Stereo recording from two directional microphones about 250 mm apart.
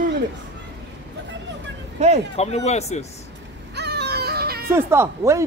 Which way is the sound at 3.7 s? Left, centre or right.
Right.